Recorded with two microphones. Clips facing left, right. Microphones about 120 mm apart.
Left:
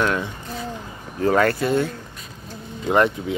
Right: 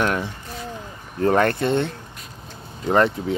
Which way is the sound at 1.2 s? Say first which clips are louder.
Even; 30° right (ahead or behind).